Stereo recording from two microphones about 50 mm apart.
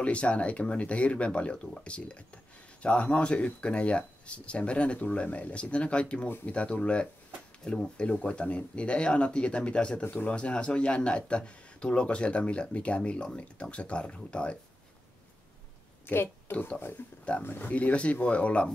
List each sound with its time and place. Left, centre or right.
0.0 s speech: left
16.1 s speech: left
17.4 s speech: left